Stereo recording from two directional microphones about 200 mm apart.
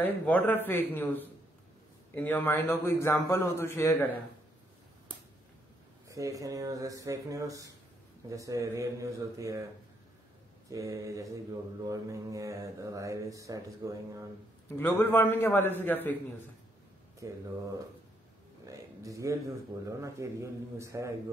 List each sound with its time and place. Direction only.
0.0 s a man's voice: 10° left (ahead or behind)
6.0 s mantra: 15° right (ahead or behind)
10.7 s mantra: 15° right (ahead or behind)
14.8 s a man's voice: 10° left (ahead or behind)
17.2 s mantra: 15° right (ahead or behind)
18.7 s mantra: 15° right (ahead or behind)